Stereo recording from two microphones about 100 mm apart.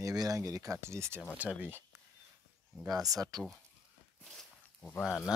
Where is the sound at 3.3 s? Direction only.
40° right (ahead or behind).